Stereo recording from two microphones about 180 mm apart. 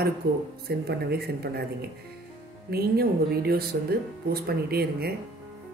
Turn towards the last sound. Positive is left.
turn(degrees=-60)  # may be behind; listen again after turning